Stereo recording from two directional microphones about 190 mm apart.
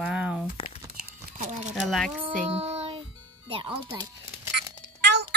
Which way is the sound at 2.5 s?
30° right (ahead or behind).